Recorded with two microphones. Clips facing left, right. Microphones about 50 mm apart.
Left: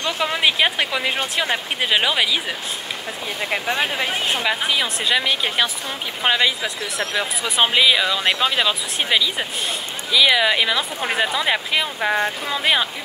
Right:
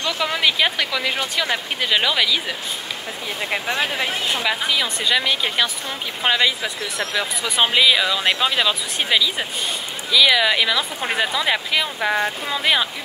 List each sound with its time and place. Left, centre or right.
0.0 s speech: left
3.4 s speech: centre